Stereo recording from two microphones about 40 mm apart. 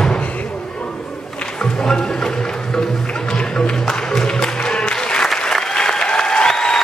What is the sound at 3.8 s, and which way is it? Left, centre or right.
Music, centre.